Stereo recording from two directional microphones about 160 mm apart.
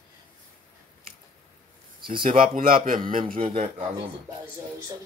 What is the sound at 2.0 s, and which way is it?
Speech, 35° right (ahead or behind).